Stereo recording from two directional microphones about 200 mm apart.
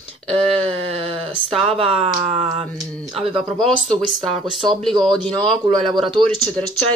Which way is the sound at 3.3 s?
Centre (ahead or behind).